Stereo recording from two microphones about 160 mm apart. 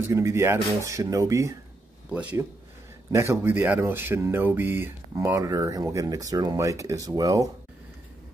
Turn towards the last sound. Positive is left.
turn(degrees=-20)  # may be behind; listen again after turning